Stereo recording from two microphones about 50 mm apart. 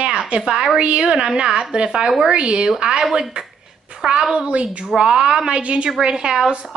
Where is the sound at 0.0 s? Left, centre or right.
Centre.